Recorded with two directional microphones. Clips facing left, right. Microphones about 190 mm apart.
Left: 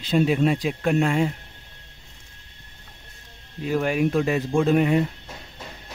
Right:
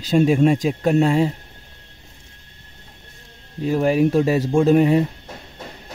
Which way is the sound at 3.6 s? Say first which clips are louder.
Right 5 dB; 35° right (ahead or behind).